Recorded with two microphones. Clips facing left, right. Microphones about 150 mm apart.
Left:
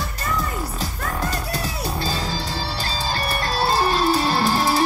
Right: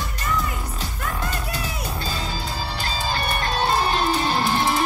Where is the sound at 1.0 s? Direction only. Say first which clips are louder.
Left 1 dB; 40° left (ahead or behind).